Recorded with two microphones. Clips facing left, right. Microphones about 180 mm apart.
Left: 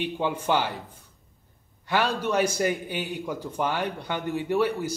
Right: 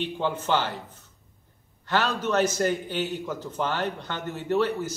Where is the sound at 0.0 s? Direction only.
10° left (ahead or behind).